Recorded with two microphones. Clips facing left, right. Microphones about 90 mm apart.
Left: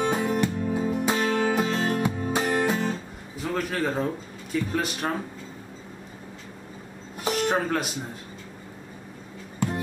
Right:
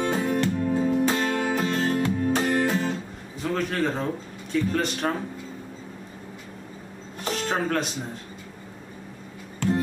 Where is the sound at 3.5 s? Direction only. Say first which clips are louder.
Right 1 dB; 5° left (ahead or behind).